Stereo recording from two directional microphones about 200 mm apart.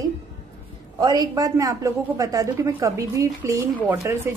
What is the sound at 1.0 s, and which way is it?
A woman's voice, 20° right (ahead or behind).